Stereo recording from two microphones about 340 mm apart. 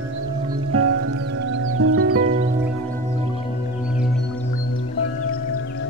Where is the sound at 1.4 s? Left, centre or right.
Right.